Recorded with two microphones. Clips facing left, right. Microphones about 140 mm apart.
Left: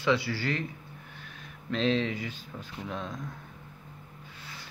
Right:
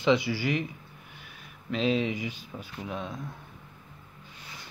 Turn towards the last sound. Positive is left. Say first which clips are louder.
# right 1 dB
turn(degrees=-5)  # may be behind; listen again after turning